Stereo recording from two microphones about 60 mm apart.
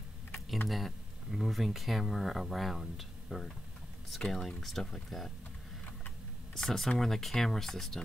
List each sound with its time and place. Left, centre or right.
0.7 s speech: centre
6.5 s speech: centre